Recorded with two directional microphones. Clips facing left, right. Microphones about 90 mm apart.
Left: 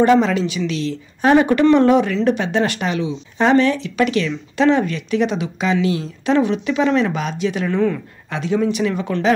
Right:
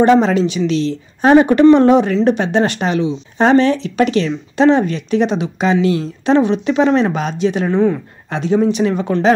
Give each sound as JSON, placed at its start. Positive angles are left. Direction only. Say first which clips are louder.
{"t": 0.0, "sound": "a woman's voice", "louder": "right 3 dB", "side_deg": -30}